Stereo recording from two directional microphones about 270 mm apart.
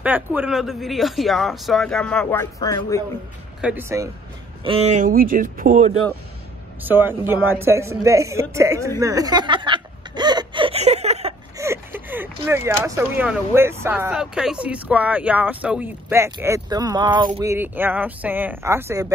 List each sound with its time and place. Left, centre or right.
0.0 s speech: centre
3.6 s speech: centre
4.6 s speech: right
6.8 s speech: centre
9.0 s snicker: centre
11.5 s speech: centre